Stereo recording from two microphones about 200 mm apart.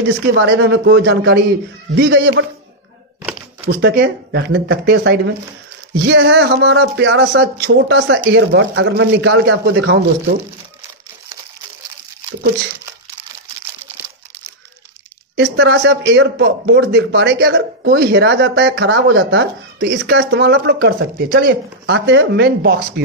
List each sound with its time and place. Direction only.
0.3 s a man's voice: 55° right (ahead or behind)
3.6 s a man's voice: 50° right (ahead or behind)
15.3 s a man's voice: 60° right (ahead or behind)